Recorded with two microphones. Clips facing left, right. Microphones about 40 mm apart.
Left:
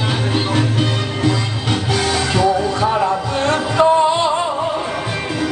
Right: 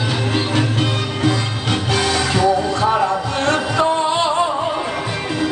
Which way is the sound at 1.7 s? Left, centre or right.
Centre.